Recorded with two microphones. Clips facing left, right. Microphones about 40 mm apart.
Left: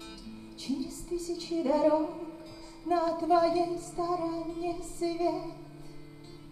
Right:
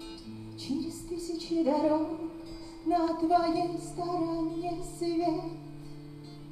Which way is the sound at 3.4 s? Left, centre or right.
Centre.